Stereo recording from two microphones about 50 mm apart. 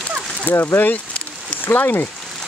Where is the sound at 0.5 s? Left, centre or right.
Left.